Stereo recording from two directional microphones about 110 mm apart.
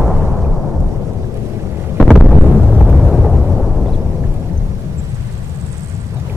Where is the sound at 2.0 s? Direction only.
5° left (ahead or behind).